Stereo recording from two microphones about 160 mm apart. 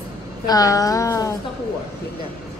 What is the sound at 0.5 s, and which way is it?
Speech, 20° left (ahead or behind).